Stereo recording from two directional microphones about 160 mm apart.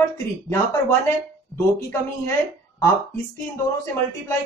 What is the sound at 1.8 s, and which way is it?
Speech, 15° left (ahead or behind).